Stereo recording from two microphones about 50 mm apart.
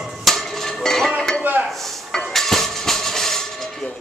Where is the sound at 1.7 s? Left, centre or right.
Centre.